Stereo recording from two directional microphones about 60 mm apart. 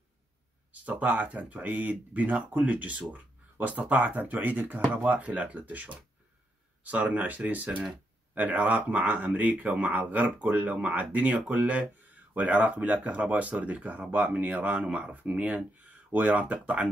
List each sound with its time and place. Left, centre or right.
1.0 s speech: right